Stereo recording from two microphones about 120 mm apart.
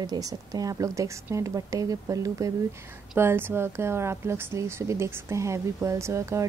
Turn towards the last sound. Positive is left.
turn(degrees=-25)  # may be behind; listen again after turning